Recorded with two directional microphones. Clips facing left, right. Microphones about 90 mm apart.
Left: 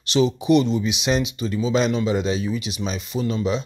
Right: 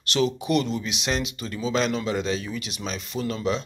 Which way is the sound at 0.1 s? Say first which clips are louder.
Left 4 dB; 15° left (ahead or behind).